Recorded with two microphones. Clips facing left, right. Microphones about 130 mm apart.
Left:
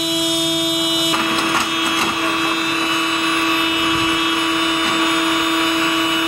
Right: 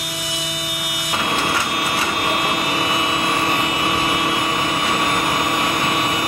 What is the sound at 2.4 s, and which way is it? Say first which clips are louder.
Vehicle: left 1 dB; 55° right (ahead or behind).